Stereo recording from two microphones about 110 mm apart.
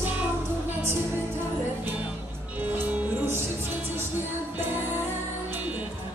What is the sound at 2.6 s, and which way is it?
Music, 15° right (ahead or behind).